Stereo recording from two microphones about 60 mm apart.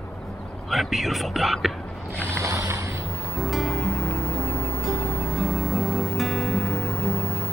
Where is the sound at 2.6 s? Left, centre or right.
Right.